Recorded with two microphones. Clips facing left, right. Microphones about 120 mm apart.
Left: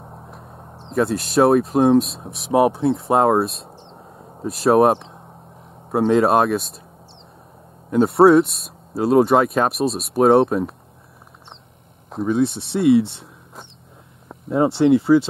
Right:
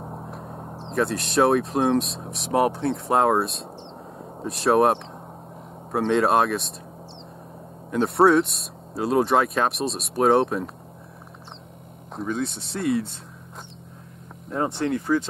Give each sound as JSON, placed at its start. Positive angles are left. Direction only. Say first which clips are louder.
{"t": 0.0, "sound": "a sound", "louder": "right 4 dB", "side_deg": -15}
{"t": 0.3, "sound": "a sound", "louder": "right 4 dB", "side_deg": 0}
{"t": 0.7, "sound": "speech", "louder": "left 4 dB", "side_deg": 0}
{"t": 7.9, "sound": "speech", "louder": "left 5 dB", "side_deg": 0}
{"t": 12.1, "sound": "speech", "louder": "left 8 dB", "side_deg": 0}
{"t": 14.5, "sound": "speech", "louder": "left 8 dB", "side_deg": 20}
{"t": 15.1, "sound": "speech", "louder": "left 6 dB", "side_deg": 10}